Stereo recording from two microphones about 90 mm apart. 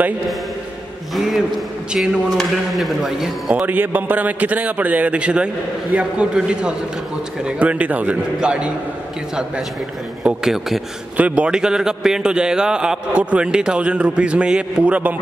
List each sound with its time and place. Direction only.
2.0 s speech: centre (ahead or behind)
3.6 s a man's voice: 20° right (ahead or behind)
10.2 s a man's voice: 5° right (ahead or behind)